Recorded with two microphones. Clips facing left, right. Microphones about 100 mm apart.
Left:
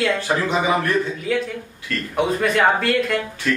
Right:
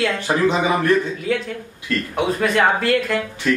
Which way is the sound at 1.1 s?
Centre (ahead or behind).